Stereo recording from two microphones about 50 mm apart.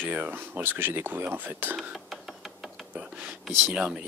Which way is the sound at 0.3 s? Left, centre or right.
Right.